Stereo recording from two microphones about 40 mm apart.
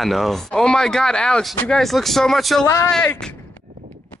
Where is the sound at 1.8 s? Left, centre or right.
Centre.